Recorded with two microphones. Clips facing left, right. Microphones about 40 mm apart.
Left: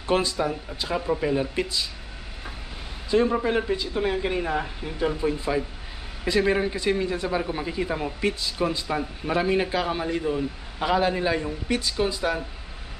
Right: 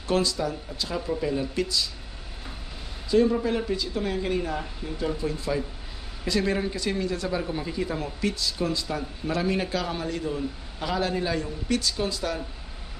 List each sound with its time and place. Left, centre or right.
0.0 s speech: left
3.1 s speech: left